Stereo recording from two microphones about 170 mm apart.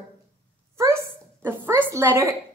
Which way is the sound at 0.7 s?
15° right (ahead or behind).